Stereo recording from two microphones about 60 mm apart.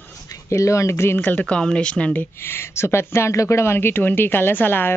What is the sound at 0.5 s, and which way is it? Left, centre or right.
Speech, left.